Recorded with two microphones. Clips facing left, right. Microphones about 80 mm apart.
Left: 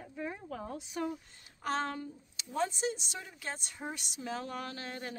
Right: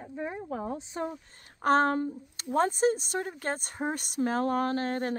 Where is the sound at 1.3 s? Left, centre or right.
Right.